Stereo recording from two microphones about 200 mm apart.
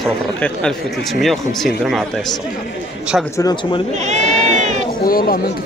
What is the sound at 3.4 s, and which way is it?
Speech, 20° left (ahead or behind).